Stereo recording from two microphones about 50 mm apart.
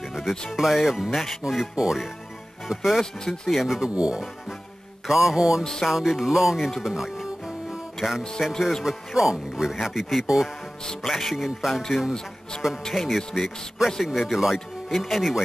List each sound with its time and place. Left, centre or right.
0.0 s music: centre
0.5 s speech: centre
1.4 s speech: centre
3.6 s speech: centre
3.9 s speech: right
5.0 s speech: centre
5.6 s music: centre
5.9 s speech: centre
6.8 s music: centre
8.4 s speech: centre
11.1 s speech: centre
12.9 s speech: centre